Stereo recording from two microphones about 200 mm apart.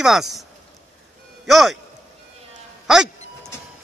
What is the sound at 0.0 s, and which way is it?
Speech, centre (ahead or behind).